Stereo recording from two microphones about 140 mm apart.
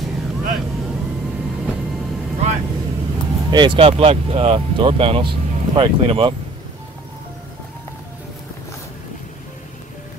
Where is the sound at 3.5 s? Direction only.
35° right (ahead or behind).